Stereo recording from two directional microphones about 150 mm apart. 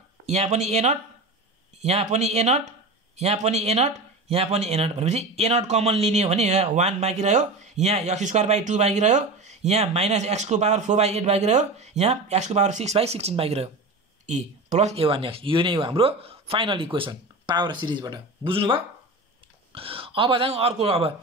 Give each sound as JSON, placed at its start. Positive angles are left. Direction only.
{"t": 0.3, "sound": "speech", "side_deg": -50}